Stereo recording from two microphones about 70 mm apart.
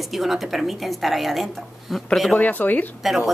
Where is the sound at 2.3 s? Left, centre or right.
Left.